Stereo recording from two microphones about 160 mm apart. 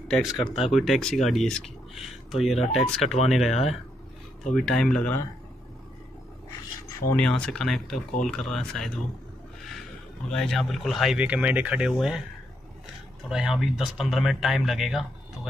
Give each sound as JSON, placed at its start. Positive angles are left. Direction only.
{"t": 0.1, "sound": "speech", "side_deg": 0}
{"t": 7.2, "sound": "speech", "side_deg": 5}
{"t": 10.3, "sound": "speech", "side_deg": 5}
{"t": 13.3, "sound": "speech", "side_deg": 0}